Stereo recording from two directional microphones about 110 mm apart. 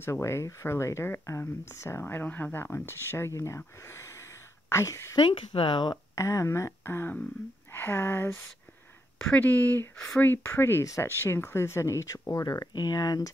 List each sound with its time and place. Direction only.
0.0 s speech: 25° left (ahead or behind)
5.6 s speech: 45° left (ahead or behind)
6.1 s speech: 25° left (ahead or behind)